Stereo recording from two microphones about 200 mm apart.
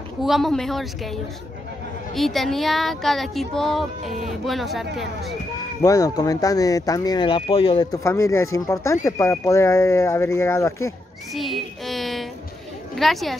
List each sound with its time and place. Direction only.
0.2 s speech: centre (ahead or behind)
5.8 s speech: 15° left (ahead or behind)
8.0 s speech: 15° left (ahead or behind)
11.3 s child singing: centre (ahead or behind)
12.9 s speech: centre (ahead or behind)